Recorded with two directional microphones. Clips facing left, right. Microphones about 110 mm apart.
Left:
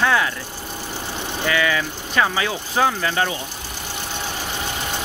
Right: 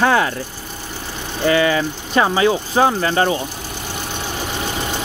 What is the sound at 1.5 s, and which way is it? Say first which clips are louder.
Speech: right 6 dB; 35° right (ahead or behind).